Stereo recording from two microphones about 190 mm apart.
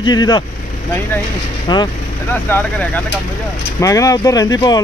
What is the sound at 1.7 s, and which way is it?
Speech, 25° left (ahead or behind).